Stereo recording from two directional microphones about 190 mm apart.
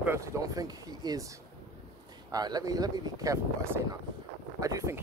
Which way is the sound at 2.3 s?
20° right (ahead or behind).